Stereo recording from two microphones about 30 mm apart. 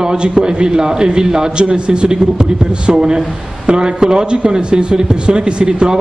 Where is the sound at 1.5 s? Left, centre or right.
Right.